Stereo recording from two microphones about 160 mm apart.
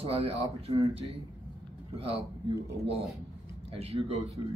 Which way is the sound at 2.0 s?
35° right (ahead or behind).